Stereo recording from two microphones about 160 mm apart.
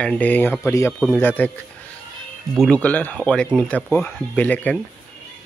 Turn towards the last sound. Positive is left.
turn(degrees=10)  # may be behind; listen again after turning